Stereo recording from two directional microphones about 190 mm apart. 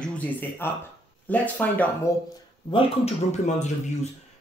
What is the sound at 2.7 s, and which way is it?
Speech, 25° left (ahead or behind).